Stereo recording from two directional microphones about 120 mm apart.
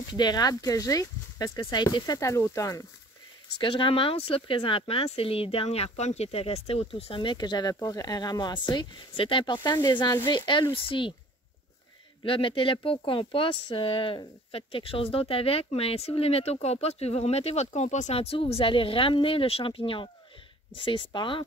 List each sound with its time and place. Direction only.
0.1 s speech: 35° left (ahead or behind)
3.6 s speech: 45° left (ahead or behind)
12.2 s speech: 45° left (ahead or behind)